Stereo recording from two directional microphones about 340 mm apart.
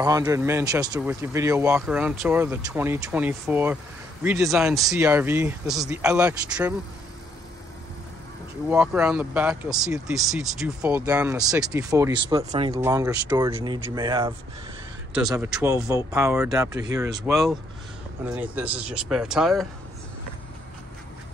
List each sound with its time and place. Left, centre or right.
0.0 s speech: centre
8.6 s speech: centre